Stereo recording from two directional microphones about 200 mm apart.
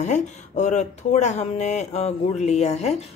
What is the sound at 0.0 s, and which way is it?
Speech, 35° left (ahead or behind).